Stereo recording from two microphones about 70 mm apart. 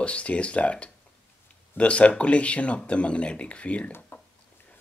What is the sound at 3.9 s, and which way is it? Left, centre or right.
Speech, left.